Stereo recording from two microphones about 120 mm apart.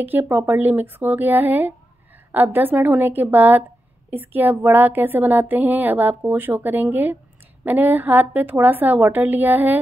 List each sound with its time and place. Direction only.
0.0 s speech: 15° right (ahead or behind)